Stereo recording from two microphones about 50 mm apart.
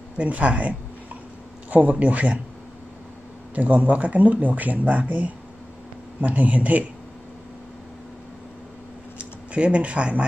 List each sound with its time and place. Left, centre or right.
0.2 s speech: right
3.5 s speech: right
9.2 s speech: right